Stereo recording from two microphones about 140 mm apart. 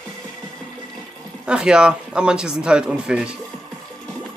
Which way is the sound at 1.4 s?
5° right (ahead or behind).